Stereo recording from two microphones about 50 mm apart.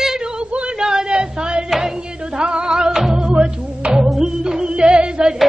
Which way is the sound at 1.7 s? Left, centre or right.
Centre.